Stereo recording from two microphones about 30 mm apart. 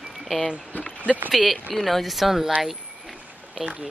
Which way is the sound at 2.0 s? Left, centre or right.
Centre.